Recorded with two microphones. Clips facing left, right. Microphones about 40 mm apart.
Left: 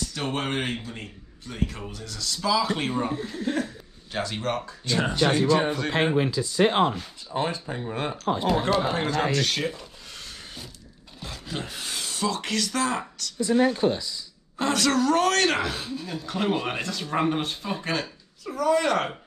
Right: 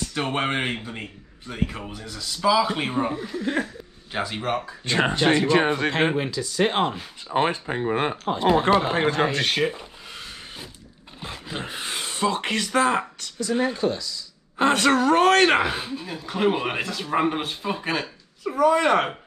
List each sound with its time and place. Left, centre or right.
0.1 s speech: right
2.9 s speech: right
4.1 s speech: centre
4.8 s speech: right
6.1 s speech: right
7.2 s speech: right
13.7 s speech: left
14.6 s speech: right